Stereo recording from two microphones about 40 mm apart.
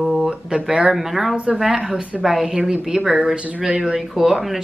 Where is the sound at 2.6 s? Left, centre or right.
Right.